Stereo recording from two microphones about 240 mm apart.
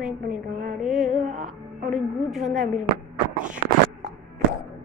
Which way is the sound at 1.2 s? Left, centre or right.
Right.